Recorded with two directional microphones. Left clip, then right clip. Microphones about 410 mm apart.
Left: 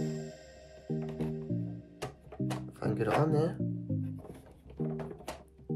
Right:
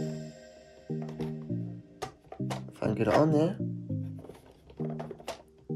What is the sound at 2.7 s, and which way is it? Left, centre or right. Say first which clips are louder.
Music: right 5 dB; right.